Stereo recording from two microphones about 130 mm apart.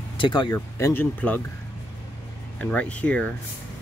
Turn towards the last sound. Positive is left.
turn(degrees=10)  # may be behind; listen again after turning